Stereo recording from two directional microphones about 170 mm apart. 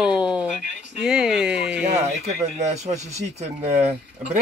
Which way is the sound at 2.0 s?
40° right (ahead or behind).